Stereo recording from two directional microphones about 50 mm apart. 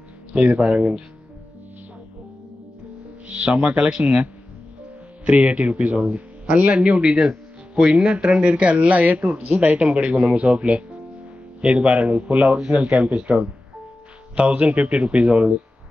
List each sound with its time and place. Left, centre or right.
0.3 s speech: right
3.3 s speech: right
14.3 s speech: right